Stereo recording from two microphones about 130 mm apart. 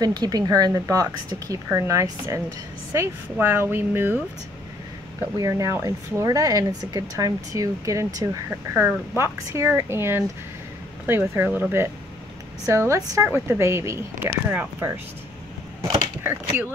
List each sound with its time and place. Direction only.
0.0 s speech: 30° right (ahead or behind); by 4.2 s 15° right (ahead or behind)
5.4 s speech: 25° right (ahead or behind)
12.6 s speech: 25° right (ahead or behind)